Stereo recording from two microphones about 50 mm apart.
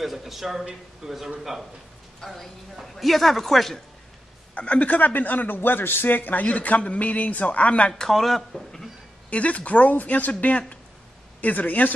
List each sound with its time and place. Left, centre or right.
0.0 s a man's voice: centre
2.2 s a woman's voice: centre
4.6 s speech: left
8.0 s speech: centre
9.3 s speech: left